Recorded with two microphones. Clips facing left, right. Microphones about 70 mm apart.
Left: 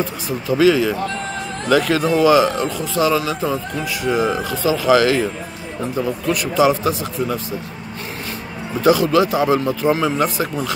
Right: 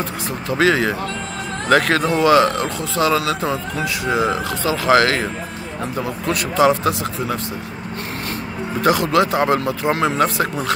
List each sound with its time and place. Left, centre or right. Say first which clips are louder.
0.0 s speech: left 2 dB; right
3.2 s speech: even; right
8.8 s speech: left 2 dB; right